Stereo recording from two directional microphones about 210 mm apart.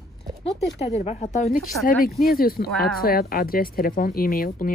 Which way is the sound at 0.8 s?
30° left (ahead or behind).